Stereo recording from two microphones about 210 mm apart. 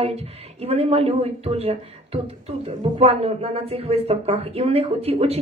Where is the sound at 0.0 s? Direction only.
30° right (ahead or behind).